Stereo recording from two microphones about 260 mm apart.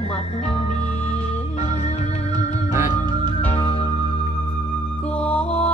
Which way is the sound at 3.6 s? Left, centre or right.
Left.